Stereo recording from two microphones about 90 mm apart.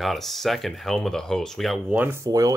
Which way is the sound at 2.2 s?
40° right (ahead or behind).